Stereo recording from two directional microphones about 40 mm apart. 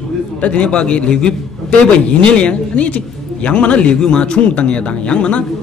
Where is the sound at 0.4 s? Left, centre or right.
Left.